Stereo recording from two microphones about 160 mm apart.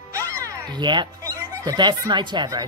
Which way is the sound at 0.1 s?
20° right (ahead or behind).